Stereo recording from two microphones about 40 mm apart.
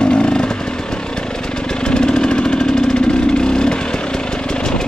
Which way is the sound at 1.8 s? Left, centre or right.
Centre.